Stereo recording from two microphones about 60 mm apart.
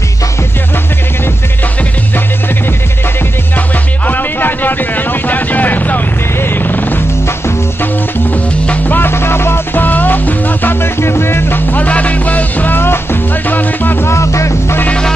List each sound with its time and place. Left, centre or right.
3.5 s music: left
7.2 s music: left
8.3 s music: left
9.1 s music: left
14.1 s music: left
14.9 s music: centre